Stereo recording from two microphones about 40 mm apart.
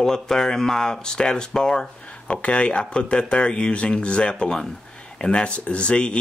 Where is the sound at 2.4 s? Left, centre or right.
Left.